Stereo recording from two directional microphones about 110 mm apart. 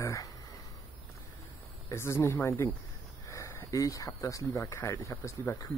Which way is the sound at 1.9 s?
25° left (ahead or behind).